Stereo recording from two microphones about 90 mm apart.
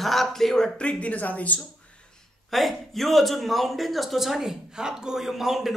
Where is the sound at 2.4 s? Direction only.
Centre (ahead or behind).